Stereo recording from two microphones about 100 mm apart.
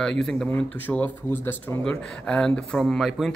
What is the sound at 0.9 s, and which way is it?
Speech, 20° left (ahead or behind).